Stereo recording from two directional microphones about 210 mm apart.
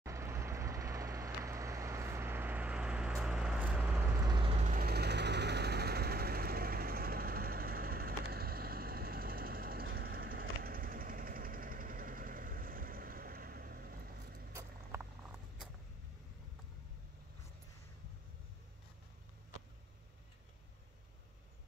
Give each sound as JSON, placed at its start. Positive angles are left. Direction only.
{"t": 0.0, "sound": "vehicle", "side_deg": -15}
{"t": 4.3, "sound": "vehicle", "side_deg": -25}